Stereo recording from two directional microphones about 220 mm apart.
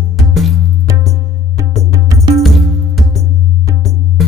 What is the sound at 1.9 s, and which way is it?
Music, 15° right (ahead or behind).